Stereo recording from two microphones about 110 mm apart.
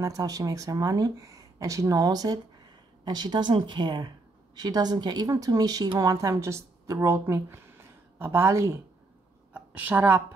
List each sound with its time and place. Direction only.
0.0 s speech: 35° right (ahead or behind)
9.5 s a woman's voice: 15° right (ahead or behind)